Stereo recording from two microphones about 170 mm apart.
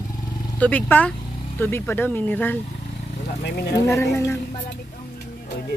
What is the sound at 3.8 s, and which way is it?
Speech, 15° left (ahead or behind).